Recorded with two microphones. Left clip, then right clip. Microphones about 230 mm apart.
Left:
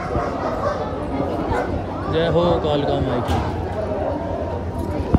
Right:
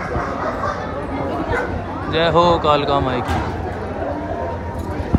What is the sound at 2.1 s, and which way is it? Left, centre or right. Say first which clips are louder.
Speech: right 4 dB; centre.